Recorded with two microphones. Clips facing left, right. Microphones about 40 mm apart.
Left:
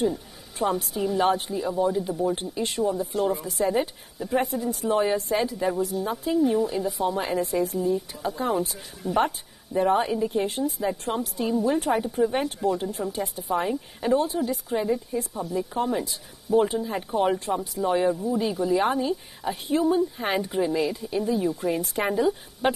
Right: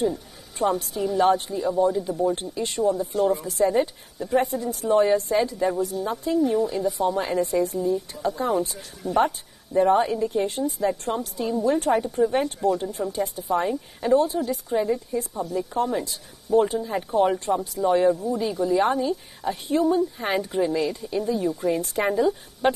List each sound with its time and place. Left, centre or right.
0.0 s speech: centre